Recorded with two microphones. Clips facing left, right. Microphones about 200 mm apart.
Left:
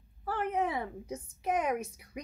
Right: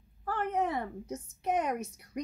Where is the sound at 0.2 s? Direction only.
10° left (ahead or behind).